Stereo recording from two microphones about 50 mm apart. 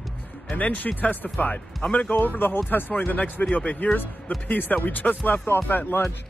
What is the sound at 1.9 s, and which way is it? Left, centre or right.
Speech, left.